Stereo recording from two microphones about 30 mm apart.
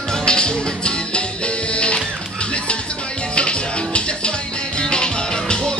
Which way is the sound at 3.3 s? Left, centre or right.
Left.